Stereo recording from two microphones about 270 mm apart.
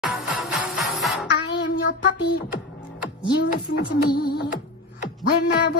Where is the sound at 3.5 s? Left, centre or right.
Left.